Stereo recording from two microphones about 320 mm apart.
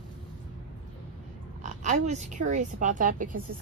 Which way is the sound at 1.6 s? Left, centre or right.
Right.